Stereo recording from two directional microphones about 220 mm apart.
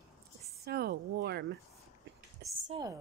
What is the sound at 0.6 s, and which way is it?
Speech, 45° right (ahead or behind).